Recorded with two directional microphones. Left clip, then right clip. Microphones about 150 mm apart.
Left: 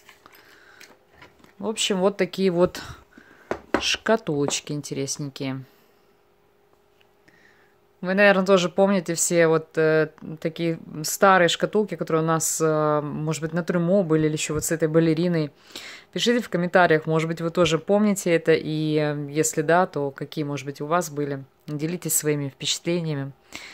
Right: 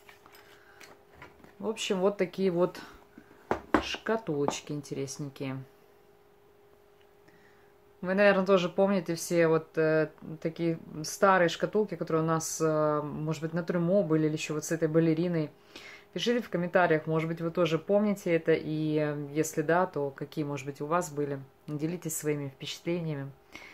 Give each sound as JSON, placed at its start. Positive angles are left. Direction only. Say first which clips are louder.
{"t": 1.6, "sound": "speech", "louder": "left 6 dB", "side_deg": 60}
{"t": 8.0, "sound": "speech", "louder": "left 6 dB", "side_deg": 50}